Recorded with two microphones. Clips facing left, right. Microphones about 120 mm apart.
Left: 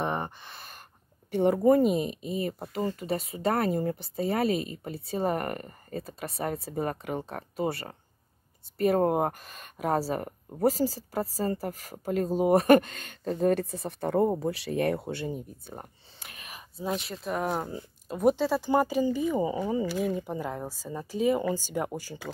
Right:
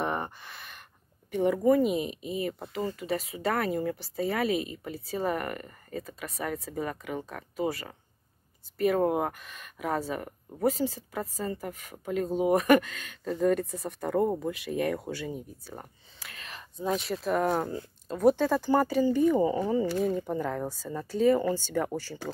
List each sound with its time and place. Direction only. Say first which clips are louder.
0.0 s a sound: even; 25° left (ahead or behind)
1.3 s speech: left 2 dB; 30° left (ahead or behind)
13.7 s speech: left 2 dB; 30° left (ahead or behind); by 22.2 s 15° left (ahead or behind)